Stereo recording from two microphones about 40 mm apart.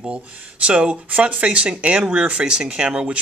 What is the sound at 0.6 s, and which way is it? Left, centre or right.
Speech, right.